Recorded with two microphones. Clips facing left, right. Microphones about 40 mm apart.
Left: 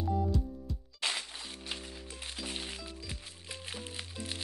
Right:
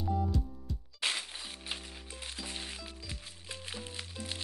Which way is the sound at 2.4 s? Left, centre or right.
Centre.